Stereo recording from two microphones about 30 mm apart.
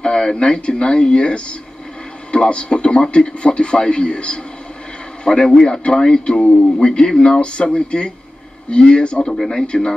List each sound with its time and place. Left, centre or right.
0.0 s a man's voice: left